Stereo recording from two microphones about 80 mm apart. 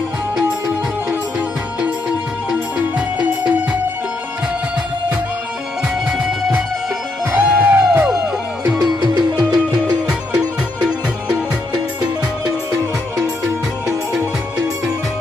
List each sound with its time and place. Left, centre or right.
6.0 s music: centre
7.3 s music: right
8.6 s music: centre
9.0 s music: right
10.8 s music: centre